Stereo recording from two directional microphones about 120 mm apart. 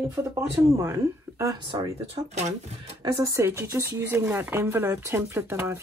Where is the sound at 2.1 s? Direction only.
70° right (ahead or behind).